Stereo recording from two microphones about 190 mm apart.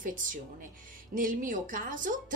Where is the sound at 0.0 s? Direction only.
45° right (ahead or behind).